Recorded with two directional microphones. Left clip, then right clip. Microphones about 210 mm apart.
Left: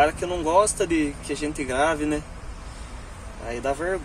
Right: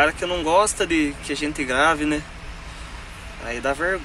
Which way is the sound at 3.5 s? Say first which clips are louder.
Right 2 dB; centre (ahead or behind).